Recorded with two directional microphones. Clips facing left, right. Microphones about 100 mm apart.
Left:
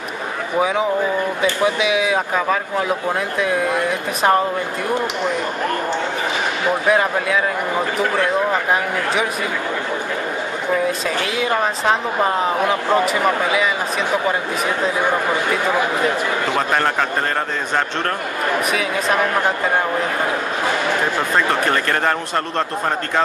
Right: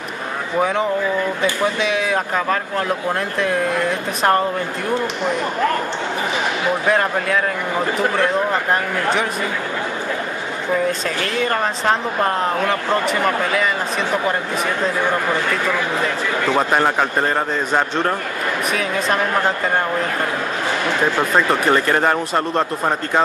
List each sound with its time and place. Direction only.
0.6 s speech: 5° left (ahead or behind)
6.9 s speech: 5° left (ahead or behind)
10.9 s speech: 5° left (ahead or behind)
16.5 s speech: 15° right (ahead or behind)
18.7 s speech: centre (ahead or behind)
21.6 s speech: 10° right (ahead or behind)